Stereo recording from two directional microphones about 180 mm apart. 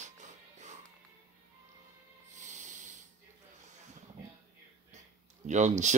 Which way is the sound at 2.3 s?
40° right (ahead or behind).